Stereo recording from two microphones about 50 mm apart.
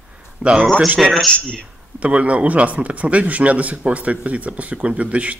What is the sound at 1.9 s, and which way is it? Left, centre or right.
Speech, right.